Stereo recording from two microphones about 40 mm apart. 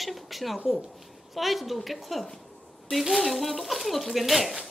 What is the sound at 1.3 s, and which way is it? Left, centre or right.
Speech, centre.